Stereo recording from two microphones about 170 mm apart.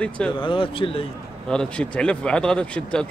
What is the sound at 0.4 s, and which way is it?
Speech, 30° left (ahead or behind).